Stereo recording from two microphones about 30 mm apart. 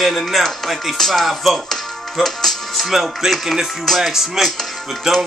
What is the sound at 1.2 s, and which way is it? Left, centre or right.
Speech, centre.